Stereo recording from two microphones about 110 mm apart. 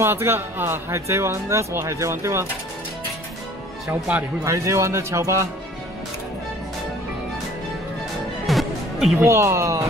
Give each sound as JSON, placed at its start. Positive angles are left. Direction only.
{"t": 0.0, "sound": "speech", "side_deg": -20}
{"t": 4.5, "sound": "speech", "side_deg": -25}
{"t": 8.5, "sound": "music", "side_deg": 0}
{"t": 9.2, "sound": "speech", "side_deg": -25}